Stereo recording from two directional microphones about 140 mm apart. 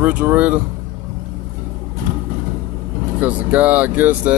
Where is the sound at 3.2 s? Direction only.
10° right (ahead or behind).